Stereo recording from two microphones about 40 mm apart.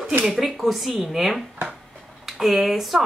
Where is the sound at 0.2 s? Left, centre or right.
Centre.